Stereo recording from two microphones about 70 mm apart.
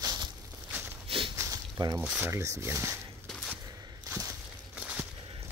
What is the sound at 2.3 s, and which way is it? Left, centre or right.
Speech, right.